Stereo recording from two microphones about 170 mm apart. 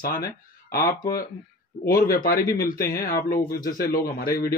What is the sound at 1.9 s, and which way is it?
Speech, 60° left (ahead or behind).